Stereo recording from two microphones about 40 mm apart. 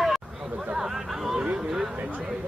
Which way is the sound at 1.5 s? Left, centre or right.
Centre.